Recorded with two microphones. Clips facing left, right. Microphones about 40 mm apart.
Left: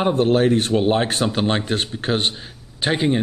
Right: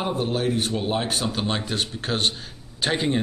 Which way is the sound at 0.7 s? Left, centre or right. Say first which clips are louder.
Left 7 dB; left.